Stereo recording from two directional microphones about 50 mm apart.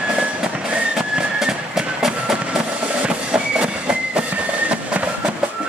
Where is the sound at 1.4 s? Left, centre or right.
Centre.